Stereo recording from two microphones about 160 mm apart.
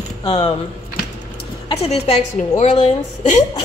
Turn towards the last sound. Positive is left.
turn(degrees=45)  # may be behind; listen again after turning